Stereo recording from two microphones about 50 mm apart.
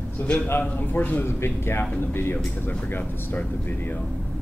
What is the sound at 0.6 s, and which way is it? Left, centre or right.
Speech, left.